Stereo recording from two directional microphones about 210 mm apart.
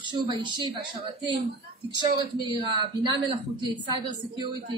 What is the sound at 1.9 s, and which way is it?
A woman's voice, 20° right (ahead or behind).